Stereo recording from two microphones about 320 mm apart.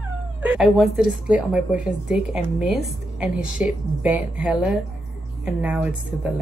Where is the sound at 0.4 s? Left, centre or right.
Centre.